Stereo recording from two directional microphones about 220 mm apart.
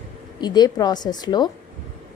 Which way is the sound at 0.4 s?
20° left (ahead or behind).